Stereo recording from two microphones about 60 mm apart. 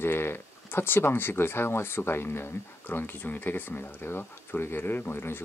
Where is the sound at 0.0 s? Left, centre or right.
Left.